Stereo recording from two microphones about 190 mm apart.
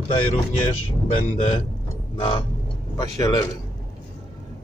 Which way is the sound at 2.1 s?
25° left (ahead or behind).